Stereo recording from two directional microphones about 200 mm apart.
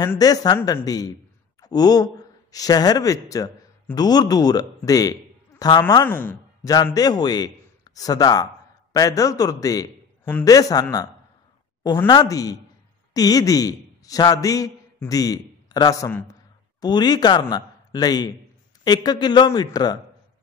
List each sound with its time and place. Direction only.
0.0 s a man's voice: 20° left (ahead or behind)